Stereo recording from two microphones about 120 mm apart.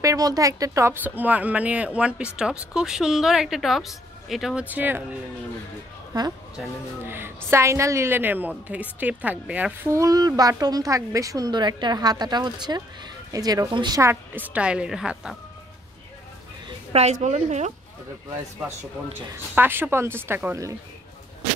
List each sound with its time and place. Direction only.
0.0 s a woman's voice: 30° right (ahead or behind)
1.0 s speech: 15° right (ahead or behind)
4.6 s speech: 15° right (ahead or behind)
6.1 s a woman's voice: 35° right (ahead or behind)
7.1 s a woman's voice: 20° right (ahead or behind)
9.8 s a woman's voice: 25° right (ahead or behind)
14.0 s speech: 15° right (ahead or behind)
16.9 s speech: 70° right (ahead or behind)
19.3 s a woman's voice: 15° right (ahead or behind)